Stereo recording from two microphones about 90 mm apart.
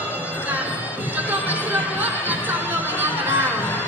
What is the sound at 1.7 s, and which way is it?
Chatter, 20° right (ahead or behind).